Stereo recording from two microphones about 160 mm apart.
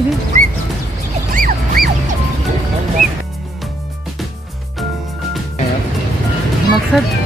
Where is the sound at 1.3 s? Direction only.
60° right (ahead or behind).